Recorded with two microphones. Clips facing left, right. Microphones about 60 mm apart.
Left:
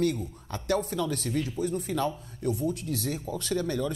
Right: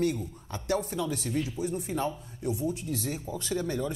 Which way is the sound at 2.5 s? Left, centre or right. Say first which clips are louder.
Left 2 dB; centre.